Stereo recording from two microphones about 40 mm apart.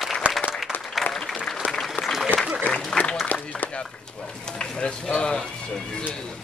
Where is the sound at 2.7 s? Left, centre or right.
Left.